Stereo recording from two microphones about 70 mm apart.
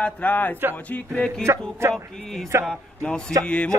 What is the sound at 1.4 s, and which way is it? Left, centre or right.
A man's voice, right.